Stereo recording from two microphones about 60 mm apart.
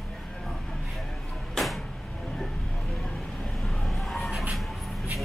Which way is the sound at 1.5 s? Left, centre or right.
Centre.